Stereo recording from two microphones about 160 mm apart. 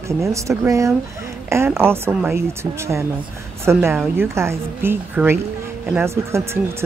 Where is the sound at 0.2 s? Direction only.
20° right (ahead or behind).